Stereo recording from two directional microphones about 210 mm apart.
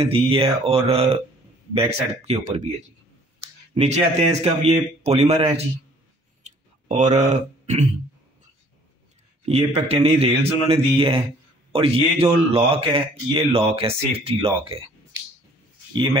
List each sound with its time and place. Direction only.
0.0 s speech: 25° right (ahead or behind)
6.4 s throat clearing: 35° right (ahead or behind)
9.5 s speech: 30° right (ahead or behind)
15.9 s speech: 20° right (ahead or behind)